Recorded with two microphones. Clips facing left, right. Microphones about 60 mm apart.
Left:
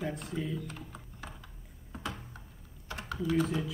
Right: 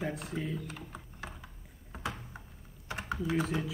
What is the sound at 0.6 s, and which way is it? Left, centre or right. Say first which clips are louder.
Typing: even; centre.